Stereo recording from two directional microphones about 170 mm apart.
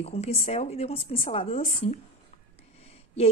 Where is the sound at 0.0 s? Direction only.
40° left (ahead or behind).